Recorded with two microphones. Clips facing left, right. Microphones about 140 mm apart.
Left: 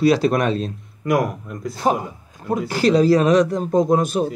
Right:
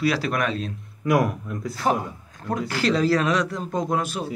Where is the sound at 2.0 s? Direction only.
10° left (ahead or behind).